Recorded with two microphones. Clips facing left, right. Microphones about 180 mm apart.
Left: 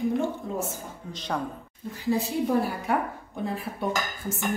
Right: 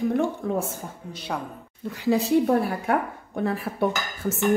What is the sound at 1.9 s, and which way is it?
A woman's voice, 75° right (ahead or behind).